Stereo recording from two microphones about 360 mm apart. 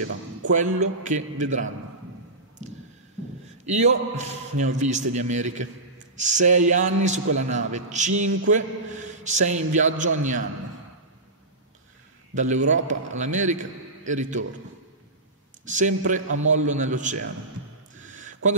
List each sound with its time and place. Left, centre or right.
0.5 s a man's voice: centre
3.6 s a man's voice: centre
12.4 s a man's voice: centre
15.6 s a man's voice: right
18.0 s a sound: right